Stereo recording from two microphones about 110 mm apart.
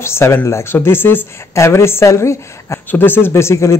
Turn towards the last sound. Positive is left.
turn(degrees=25)  # may be behind; listen again after turning